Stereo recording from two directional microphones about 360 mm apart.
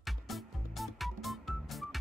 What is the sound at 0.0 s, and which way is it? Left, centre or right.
Music, centre.